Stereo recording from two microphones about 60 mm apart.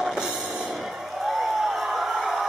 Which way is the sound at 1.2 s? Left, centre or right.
Centre.